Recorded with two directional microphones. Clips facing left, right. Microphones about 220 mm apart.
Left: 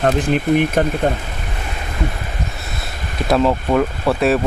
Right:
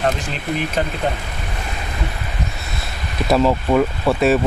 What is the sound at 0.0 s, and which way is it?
Speech, 55° left (ahead or behind).